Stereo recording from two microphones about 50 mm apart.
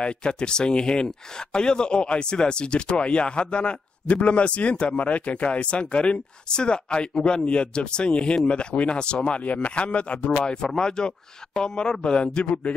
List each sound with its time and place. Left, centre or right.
0.0 s speech: centre